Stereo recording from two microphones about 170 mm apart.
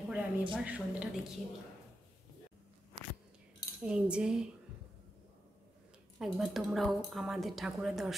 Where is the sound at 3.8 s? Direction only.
5° right (ahead or behind).